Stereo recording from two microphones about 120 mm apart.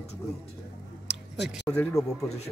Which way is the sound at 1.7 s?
10° left (ahead or behind).